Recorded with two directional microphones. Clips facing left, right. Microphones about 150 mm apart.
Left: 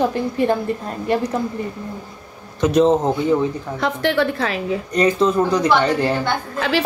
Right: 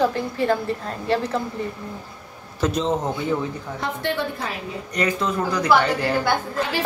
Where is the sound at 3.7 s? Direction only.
90° left.